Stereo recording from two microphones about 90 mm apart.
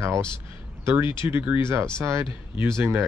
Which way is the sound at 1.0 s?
65° left (ahead or behind).